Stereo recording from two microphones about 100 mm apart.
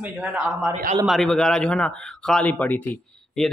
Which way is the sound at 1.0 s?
5° left (ahead or behind).